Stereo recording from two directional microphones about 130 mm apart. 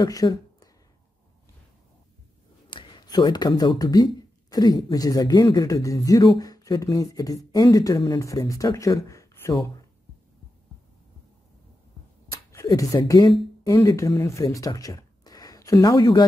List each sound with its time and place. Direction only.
0.0 s speech: 30° left (ahead or behind)
2.7 s speech: 35° left (ahead or behind)
12.3 s speech: 25° left (ahead or behind)